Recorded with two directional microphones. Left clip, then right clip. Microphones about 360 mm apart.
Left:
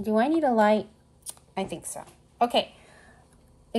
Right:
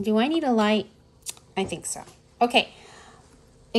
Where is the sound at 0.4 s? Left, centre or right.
Centre.